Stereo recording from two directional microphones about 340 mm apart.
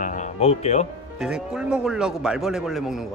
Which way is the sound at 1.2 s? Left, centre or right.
Centre.